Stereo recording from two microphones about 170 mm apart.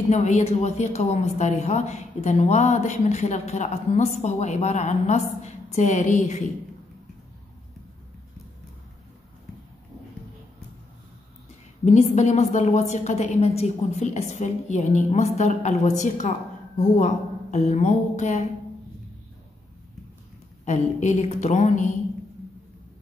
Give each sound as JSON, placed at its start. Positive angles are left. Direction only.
{"t": 0.1, "sound": "a woman's voice", "side_deg": 40}
{"t": 11.8, "sound": "a woman's voice", "side_deg": 40}
{"t": 20.6, "sound": "a woman's voice", "side_deg": 45}